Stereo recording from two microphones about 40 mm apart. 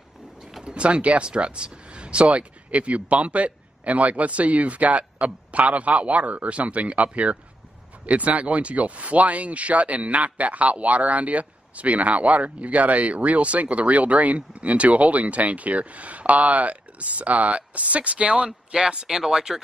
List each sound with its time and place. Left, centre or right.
0.7 s speech: right